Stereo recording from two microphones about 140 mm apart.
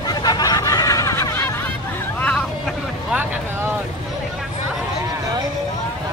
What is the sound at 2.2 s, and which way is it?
Vehicle, 5° left (ahead or behind).